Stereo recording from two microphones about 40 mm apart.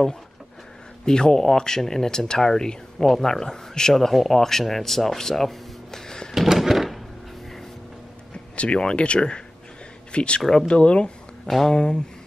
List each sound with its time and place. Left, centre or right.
1.0 s speech: centre
6.3 s a sound: centre
8.5 s speech: left
10.4 s speech: centre
10.7 s speech: left
11.4 s speech: centre